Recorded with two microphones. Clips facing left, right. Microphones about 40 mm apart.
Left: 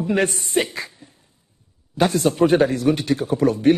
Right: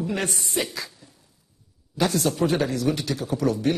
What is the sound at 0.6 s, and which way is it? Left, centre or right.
Speech, left.